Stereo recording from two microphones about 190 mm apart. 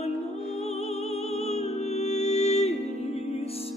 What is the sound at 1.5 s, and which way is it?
Music, 35° left (ahead or behind).